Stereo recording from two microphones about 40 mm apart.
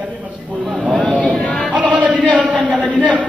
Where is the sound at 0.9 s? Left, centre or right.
Left.